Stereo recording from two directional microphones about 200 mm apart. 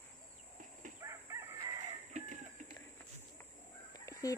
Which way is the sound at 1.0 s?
15° right (ahead or behind).